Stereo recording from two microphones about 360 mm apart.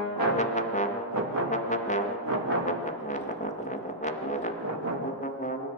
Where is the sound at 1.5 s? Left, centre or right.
Centre.